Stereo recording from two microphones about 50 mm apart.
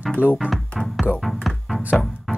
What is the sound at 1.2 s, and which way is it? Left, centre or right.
Music, centre.